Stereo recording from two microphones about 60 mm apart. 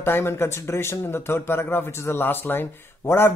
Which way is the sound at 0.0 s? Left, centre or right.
Left.